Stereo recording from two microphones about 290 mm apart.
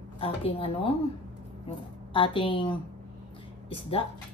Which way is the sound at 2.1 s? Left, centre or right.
Centre.